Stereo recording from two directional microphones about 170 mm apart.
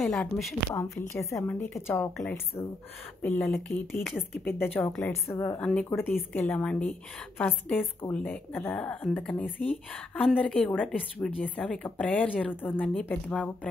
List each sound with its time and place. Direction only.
0.0 s a woman's voice: 5° left (ahead or behind)
0.9 s speech: 15° left (ahead or behind)